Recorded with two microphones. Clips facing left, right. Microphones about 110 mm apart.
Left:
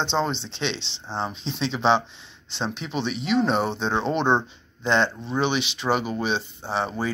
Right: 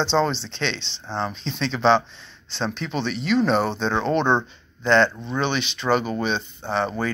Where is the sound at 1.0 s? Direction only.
15° left (ahead or behind).